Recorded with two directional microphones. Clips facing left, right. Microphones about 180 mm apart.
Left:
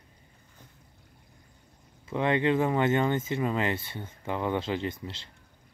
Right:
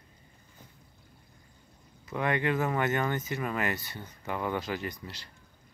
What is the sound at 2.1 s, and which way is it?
Speech, 25° left (ahead or behind).